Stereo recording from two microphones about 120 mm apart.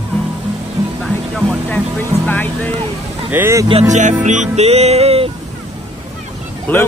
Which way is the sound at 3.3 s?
20° right (ahead or behind).